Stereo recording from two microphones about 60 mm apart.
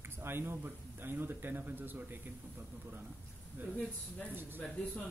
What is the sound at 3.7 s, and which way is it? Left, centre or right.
Speech, left.